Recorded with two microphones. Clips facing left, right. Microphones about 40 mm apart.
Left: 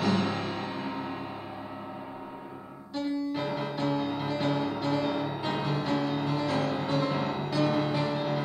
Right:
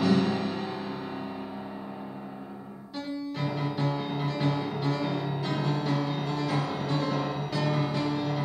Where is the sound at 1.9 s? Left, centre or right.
Centre.